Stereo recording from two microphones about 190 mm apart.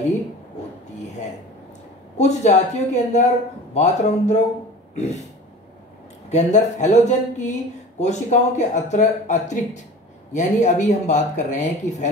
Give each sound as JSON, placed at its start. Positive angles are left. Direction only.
{"t": 2.1, "sound": "speech", "side_deg": 35}
{"t": 4.9, "sound": "a sound", "side_deg": 35}
{"t": 6.3, "sound": "speech", "side_deg": 40}